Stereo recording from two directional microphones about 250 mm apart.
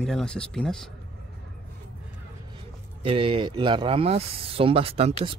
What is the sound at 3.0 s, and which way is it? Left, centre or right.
Speech, right.